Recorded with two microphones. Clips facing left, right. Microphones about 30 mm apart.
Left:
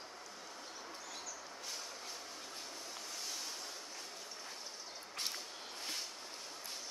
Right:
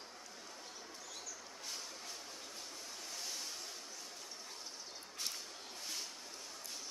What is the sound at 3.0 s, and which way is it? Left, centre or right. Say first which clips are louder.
Waves: even; centre.